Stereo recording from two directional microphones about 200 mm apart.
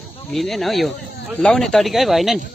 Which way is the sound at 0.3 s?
Centre (ahead or behind).